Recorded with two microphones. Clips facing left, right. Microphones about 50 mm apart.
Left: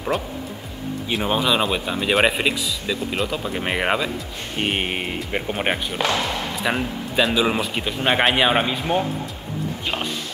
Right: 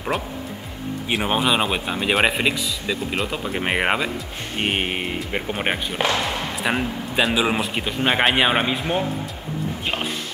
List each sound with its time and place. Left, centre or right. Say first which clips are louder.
0.1 s speech: even; centre
1.1 s speech: even; centre